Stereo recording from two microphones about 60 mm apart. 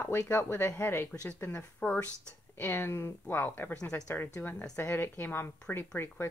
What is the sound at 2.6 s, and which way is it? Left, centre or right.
Speech, left.